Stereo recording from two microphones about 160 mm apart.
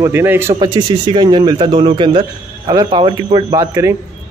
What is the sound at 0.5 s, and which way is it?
A man's voice, 30° right (ahead or behind).